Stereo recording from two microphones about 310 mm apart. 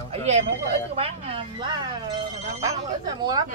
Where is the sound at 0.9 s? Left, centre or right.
Centre.